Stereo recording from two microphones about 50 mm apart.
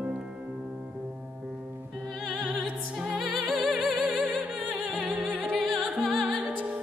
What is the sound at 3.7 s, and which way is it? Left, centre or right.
Music, right.